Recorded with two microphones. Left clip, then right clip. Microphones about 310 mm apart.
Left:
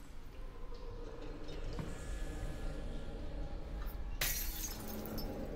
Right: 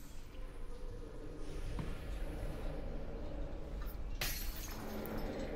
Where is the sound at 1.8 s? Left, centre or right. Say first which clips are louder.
Right 2 dB; centre.